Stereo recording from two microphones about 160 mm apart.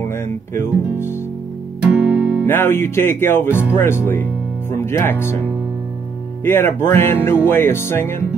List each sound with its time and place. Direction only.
0.1 s music: 15° left (ahead or behind)
1.8 s music: 10° right (ahead or behind)
2.4 s speech: 15° left (ahead or behind)
6.4 s speech: 15° left (ahead or behind)